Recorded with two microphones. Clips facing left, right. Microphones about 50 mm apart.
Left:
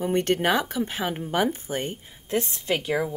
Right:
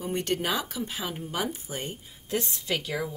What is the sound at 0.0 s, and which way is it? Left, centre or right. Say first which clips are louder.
Speech: left 6 dB; left.